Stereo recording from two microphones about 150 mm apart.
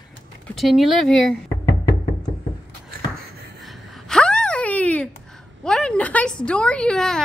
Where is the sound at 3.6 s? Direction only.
Centre (ahead or behind).